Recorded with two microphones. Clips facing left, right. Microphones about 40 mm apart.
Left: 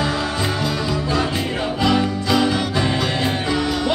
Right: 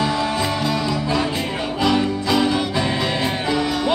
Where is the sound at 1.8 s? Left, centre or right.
Centre.